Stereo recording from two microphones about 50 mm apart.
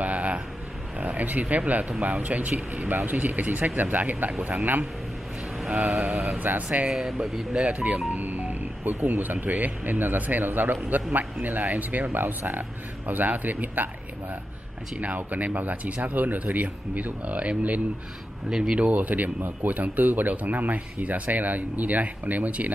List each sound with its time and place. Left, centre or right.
0.0 s a sound: right
1.7 s speech: right
2.0 s speech: centre
2.2 s speech: right
6.4 s speech: right
6.9 s speech: centre
7.5 s speech: right
15.0 s speech: right
18.5 s speech: centre
18.9 s speech: right